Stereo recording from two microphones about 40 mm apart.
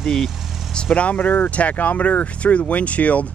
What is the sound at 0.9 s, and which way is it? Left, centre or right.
Speech, left.